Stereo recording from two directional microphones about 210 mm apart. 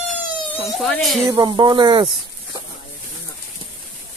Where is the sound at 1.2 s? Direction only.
20° right (ahead or behind).